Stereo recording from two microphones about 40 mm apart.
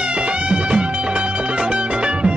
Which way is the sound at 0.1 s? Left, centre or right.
Right.